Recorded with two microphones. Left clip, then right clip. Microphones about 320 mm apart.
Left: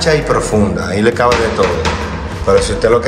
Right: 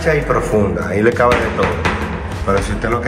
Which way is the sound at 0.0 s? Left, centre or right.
Centre.